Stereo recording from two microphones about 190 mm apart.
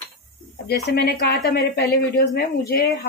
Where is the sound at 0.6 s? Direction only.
55° left (ahead or behind).